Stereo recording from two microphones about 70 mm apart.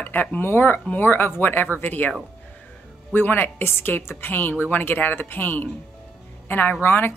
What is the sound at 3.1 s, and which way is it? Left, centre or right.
A woman's voice, left.